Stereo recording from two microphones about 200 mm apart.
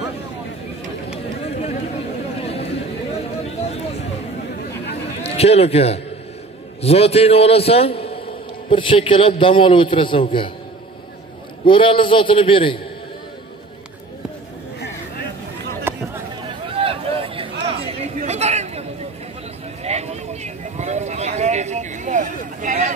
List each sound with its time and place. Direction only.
1.6 s chatter: 30° left (ahead or behind)
5.2 s a man's voice: 30° left (ahead or behind)
11.6 s a man's voice: 25° left (ahead or behind)
15.9 s a sound: 10° right (ahead or behind)
16.7 s a sound: 30° right (ahead or behind)
18.2 s chatter: 35° right (ahead or behind)
19.8 s vehicle: 35° right (ahead or behind)